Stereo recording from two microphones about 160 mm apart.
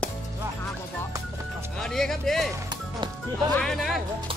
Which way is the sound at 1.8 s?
5° left (ahead or behind).